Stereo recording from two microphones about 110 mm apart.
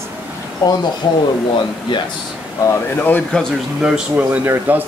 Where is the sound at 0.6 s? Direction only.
35° left (ahead or behind).